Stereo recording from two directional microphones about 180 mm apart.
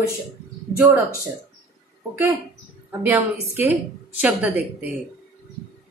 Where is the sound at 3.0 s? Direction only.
10° right (ahead or behind).